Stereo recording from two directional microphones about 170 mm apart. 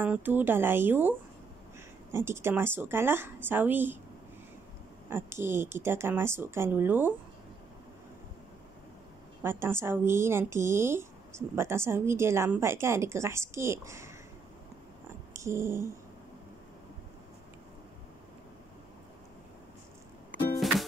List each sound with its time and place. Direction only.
0.0 s a woman's voice: 10° right (ahead or behind)
2.1 s a woman's voice: 15° right (ahead or behind)
5.1 s a woman's voice: 15° right (ahead or behind)
9.4 s a woman's voice: 15° right (ahead or behind)
15.3 s a sound: 15° right (ahead or behind)
20.5 s music: centre (ahead or behind)